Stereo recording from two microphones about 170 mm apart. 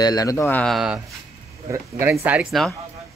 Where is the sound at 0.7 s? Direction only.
5° right (ahead or behind).